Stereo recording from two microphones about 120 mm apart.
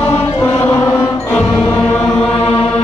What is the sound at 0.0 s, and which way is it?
Chant, 20° left (ahead or behind).